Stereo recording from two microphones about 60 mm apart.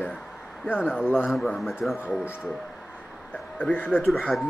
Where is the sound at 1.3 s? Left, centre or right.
Centre.